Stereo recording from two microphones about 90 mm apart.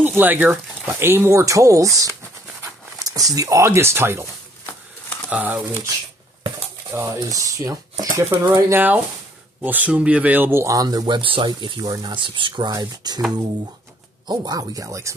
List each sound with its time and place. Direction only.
0.2 s speech: 20° right (ahead or behind)
5.3 s speech: 15° right (ahead or behind)
6.9 s speech: 30° right (ahead or behind)
11.1 s speech: 70° right (ahead or behind)
11.8 s speech: 50° right (ahead or behind); by 12.7 s 65° right (ahead or behind)
12.7 s speech: 50° right (ahead or behind)
14.2 s speech: 50° right (ahead or behind)